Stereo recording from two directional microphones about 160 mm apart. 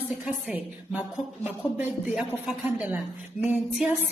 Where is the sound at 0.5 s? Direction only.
5° right (ahead or behind).